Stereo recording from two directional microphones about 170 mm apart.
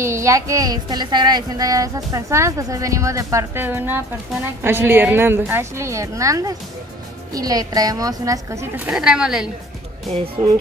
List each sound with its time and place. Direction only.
0.0 s speech: 15° right (ahead or behind)
10.0 s speech: 35° right (ahead or behind)